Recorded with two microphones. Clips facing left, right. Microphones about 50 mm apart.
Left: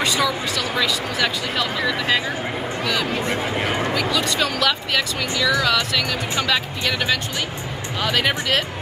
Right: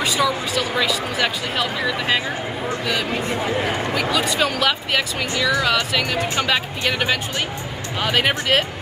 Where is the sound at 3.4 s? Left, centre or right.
Centre.